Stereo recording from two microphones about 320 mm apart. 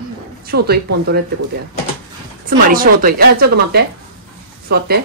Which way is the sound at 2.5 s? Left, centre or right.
Right.